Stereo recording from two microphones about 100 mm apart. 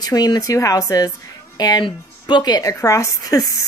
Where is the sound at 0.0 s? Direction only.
40° left (ahead or behind).